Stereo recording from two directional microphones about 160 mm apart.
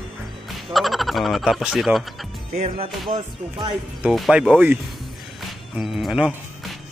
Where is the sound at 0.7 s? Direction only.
Centre (ahead or behind).